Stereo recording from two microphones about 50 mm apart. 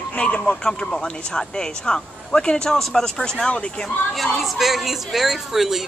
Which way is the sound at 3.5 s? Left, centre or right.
Left.